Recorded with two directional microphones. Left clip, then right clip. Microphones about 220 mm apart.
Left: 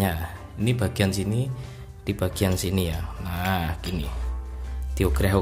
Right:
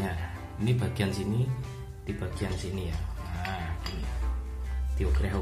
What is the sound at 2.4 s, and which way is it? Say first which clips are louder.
Speech: left 10 dB; 50° left (ahead or behind).